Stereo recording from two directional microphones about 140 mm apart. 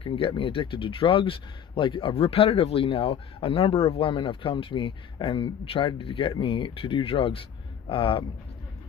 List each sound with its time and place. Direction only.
0.0 s speech: 40° left (ahead or behind)